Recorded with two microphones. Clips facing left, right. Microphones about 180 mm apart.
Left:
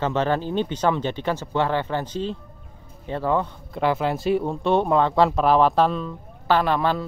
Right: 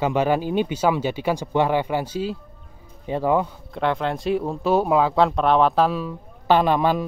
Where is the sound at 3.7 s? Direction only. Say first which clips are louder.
Left 2 dB; 5° left (ahead or behind).